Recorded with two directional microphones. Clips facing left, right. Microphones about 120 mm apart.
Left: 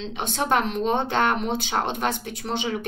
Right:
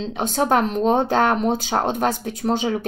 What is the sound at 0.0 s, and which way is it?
Speech, 40° right (ahead or behind).